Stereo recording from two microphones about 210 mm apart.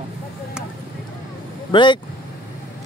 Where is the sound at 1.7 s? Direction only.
20° left (ahead or behind).